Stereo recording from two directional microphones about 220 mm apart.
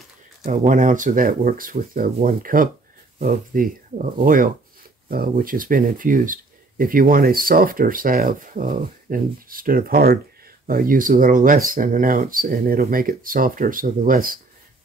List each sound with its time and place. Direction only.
0.5 s speech: 35° right (ahead or behind)